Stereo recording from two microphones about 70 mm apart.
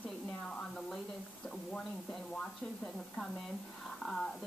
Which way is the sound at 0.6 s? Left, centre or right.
Centre.